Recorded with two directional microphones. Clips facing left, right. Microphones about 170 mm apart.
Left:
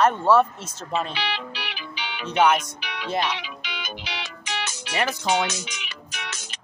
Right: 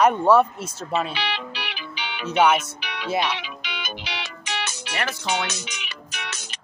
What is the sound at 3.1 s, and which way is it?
Speech, 10° right (ahead or behind).